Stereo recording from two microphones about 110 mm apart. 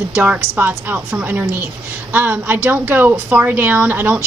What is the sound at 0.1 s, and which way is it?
A woman's voice, 15° right (ahead or behind).